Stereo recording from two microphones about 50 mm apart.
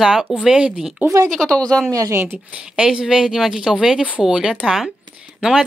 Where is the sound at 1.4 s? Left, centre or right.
Centre.